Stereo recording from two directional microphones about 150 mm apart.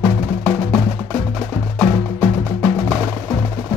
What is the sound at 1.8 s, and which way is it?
Music, 10° left (ahead or behind).